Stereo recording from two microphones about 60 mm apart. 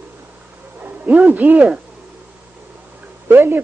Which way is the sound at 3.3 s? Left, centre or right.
Right.